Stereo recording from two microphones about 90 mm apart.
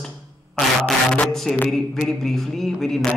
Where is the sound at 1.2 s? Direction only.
5° left (ahead or behind).